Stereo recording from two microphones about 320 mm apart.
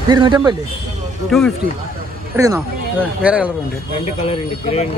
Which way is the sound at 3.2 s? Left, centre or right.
Centre.